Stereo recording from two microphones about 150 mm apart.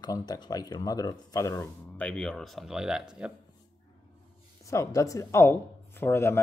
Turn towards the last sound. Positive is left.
turn(degrees=15)  # may be behind; listen again after turning